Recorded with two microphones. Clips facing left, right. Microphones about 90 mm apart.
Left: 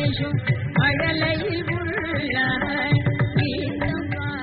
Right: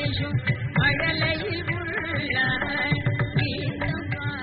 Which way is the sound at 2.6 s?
25° left (ahead or behind).